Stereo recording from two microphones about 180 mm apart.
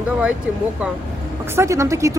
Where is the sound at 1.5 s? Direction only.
15° right (ahead or behind).